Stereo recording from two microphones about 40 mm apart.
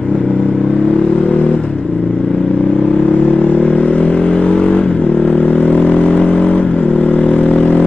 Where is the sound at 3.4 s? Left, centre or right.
Left.